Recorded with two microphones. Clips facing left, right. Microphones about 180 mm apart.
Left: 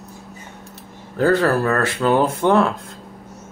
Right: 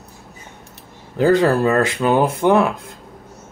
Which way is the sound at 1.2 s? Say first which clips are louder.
Right 2 dB; 15° right (ahead or behind).